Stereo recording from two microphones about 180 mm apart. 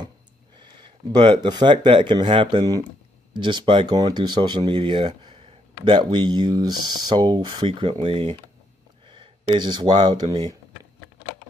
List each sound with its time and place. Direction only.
0.6 s speech: 25° right (ahead or behind)